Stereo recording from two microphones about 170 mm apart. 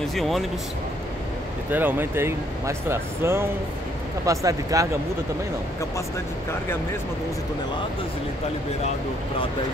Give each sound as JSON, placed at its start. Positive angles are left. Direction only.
{"t": 0.0, "sound": "speech", "side_deg": 0}
{"t": 1.7, "sound": "speech", "side_deg": -10}